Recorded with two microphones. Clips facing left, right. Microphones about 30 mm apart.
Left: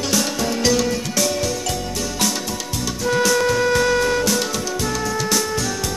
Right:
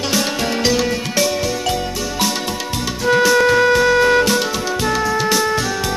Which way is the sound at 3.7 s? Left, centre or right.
Centre.